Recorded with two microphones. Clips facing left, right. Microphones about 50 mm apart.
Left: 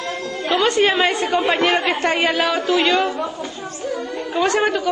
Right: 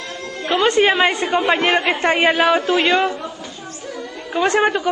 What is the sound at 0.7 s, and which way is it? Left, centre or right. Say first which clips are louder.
A woman's voice: right 3 dB; right.